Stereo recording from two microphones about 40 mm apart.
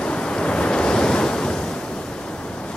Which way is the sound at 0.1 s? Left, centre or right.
Left.